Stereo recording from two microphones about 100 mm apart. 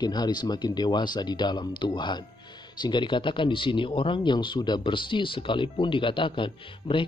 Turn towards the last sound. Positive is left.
turn(degrees=60)  # may be behind; listen again after turning